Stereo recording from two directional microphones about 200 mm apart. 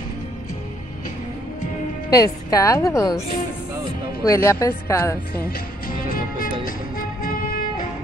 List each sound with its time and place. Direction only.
2.0 s a woman's voice: 15° left (ahead or behind)
4.2 s a woman's voice: 15° left (ahead or behind)
5.3 s music: 50° left (ahead or behind)